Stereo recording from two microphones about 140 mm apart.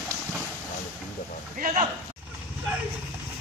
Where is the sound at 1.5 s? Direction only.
70° right (ahead or behind).